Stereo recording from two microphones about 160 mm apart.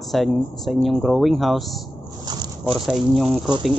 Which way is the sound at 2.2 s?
25° right (ahead or behind).